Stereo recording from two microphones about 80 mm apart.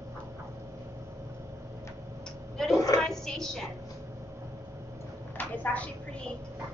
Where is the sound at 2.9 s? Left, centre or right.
Centre.